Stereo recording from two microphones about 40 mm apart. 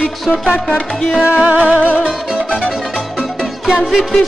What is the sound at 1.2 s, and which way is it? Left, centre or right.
Music, right.